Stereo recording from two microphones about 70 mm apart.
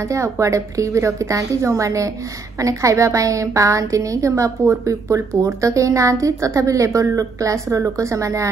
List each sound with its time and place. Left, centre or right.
0.1 s a woman's voice: right